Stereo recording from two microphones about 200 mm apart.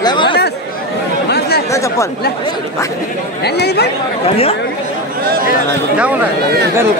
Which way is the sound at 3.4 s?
55° left (ahead or behind).